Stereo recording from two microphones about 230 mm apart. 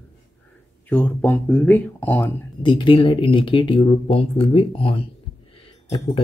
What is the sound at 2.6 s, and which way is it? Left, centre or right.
Speech, left.